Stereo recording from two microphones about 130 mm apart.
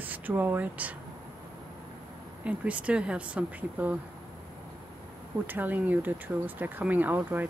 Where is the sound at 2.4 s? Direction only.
10° right (ahead or behind).